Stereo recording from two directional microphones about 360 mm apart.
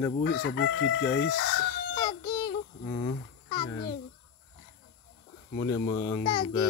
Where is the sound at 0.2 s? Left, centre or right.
Left.